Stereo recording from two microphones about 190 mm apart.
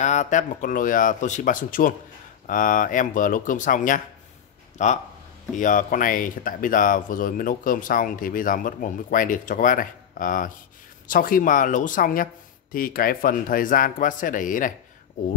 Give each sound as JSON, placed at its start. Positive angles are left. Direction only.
{"t": 0.0, "sound": "speech", "side_deg": 40}